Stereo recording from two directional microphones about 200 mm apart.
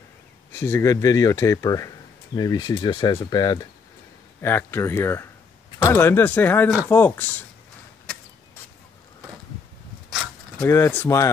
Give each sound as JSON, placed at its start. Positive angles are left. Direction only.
{"t": 0.5, "sound": "speech", "side_deg": 10}
{"t": 10.0, "sound": "a sound", "side_deg": 0}
{"t": 10.7, "sound": "speech", "side_deg": 10}